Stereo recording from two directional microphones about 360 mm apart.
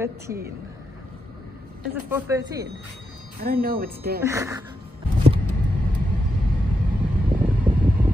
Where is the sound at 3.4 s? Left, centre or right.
Right.